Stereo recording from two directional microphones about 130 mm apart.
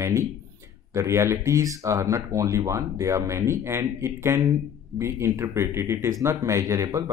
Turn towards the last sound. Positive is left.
turn(degrees=-25)  # may be behind; listen again after turning